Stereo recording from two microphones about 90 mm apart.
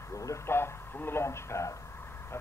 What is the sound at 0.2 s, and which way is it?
Radio, 30° left (ahead or behind).